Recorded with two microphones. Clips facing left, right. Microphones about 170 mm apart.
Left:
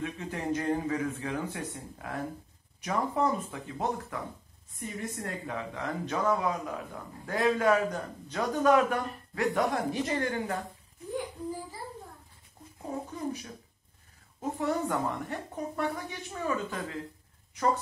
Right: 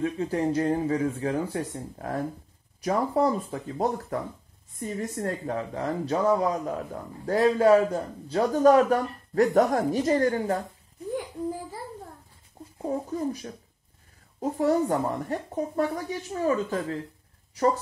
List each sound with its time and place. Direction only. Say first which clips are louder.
0.0 s a man's voice: right 8 dB; 35° right (ahead or behind)
12.7 s a man's voice: right 8 dB; 40° right (ahead or behind)